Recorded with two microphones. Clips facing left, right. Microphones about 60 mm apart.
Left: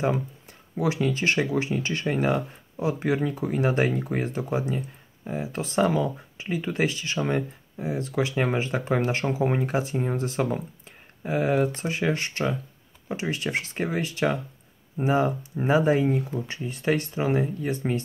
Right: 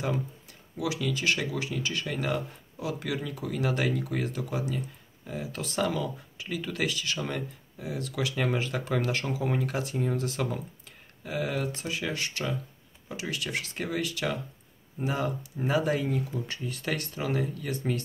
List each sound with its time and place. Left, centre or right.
0.5 s speech: left